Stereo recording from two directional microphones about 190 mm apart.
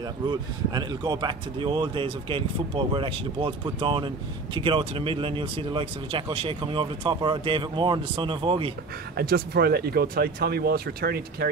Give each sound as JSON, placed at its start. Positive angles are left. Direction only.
{"t": 0.3, "sound": "speech", "side_deg": -20}
{"t": 9.1, "sound": "speech", "side_deg": -55}